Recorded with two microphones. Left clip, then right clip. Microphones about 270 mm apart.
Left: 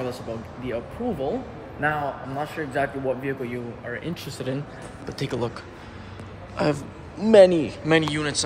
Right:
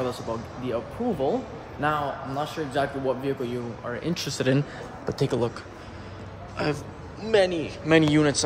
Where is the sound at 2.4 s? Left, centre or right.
Centre.